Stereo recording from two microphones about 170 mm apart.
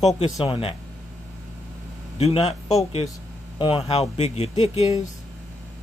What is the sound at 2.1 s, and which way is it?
Speech, 35° left (ahead or behind).